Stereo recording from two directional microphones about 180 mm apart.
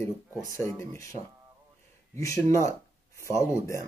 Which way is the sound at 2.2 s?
15° left (ahead or behind).